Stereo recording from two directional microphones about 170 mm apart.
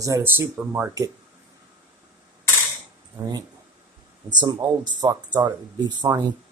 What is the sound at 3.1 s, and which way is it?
Speech, 25° right (ahead or behind).